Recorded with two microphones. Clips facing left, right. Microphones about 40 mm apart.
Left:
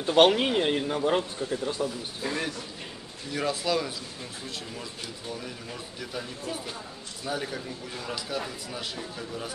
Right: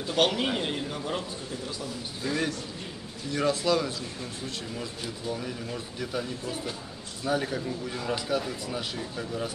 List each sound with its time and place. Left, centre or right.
0.0 s a man's voice: left
3.3 s speech: centre
5.4 s speech: centre
7.2 s speech: centre